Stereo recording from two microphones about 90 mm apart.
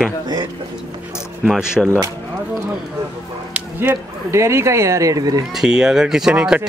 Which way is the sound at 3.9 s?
30° right (ahead or behind).